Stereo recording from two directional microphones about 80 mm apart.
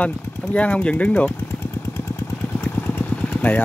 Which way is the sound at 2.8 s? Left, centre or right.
Left.